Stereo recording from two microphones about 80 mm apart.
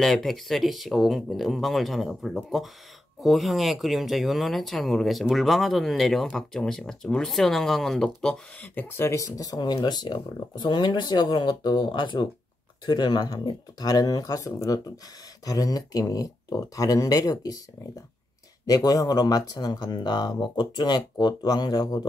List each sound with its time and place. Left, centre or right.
0.0 s speech: centre
8.7 s speech: left
12.8 s speech: left
13.8 s speech: left
18.9 s speech: left